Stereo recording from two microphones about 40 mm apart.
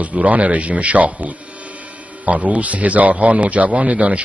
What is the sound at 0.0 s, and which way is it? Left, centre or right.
A man's voice, right.